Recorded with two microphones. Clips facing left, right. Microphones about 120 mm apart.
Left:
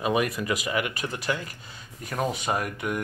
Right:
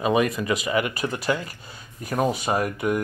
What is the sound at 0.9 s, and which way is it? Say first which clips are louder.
Speech: right 4 dB; 40° right (ahead or behind).